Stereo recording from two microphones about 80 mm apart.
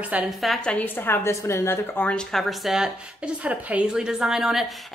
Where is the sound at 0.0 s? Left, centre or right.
Centre.